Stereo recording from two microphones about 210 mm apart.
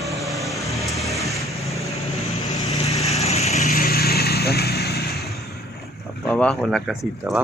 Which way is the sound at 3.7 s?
45° left (ahead or behind).